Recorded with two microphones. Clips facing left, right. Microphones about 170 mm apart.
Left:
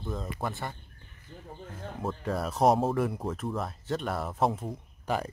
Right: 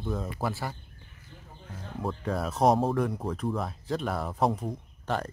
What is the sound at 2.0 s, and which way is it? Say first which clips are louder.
Speech: right 1 dB; centre (ahead or behind).